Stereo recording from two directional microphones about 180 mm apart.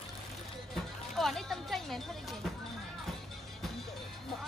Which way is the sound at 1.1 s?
Centre (ahead or behind).